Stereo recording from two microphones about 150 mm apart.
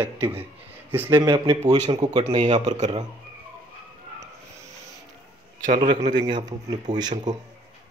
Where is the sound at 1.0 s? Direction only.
30° right (ahead or behind).